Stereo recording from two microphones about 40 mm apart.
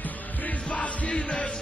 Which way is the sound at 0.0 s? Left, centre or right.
Left.